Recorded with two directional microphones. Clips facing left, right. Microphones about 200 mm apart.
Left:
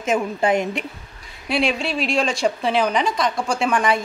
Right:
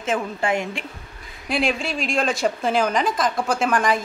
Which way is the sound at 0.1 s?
20° left (ahead or behind).